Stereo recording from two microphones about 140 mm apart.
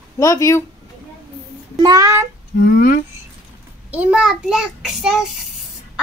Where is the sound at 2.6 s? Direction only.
80° left.